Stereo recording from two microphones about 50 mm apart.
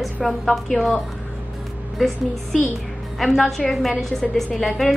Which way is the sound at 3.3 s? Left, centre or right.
Centre.